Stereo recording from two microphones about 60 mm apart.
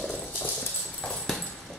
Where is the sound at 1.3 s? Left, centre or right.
Centre.